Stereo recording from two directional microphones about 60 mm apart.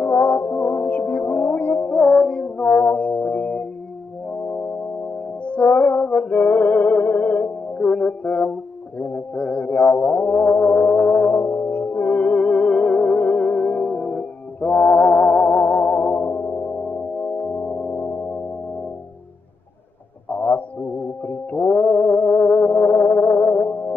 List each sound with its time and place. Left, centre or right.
0.0 s music: left
2.0 s music: centre; by 3.6 s left
5.4 s music: left
11.4 s music: left
17.4 s organ: left
20.2 s a sound: left
21.3 s music: left